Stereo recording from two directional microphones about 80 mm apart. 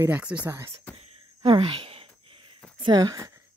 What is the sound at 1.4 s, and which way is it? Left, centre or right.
Speech, right.